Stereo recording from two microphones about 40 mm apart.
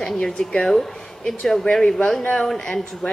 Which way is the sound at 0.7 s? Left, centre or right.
Centre.